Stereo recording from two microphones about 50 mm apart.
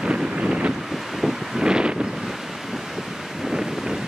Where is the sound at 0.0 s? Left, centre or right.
Centre.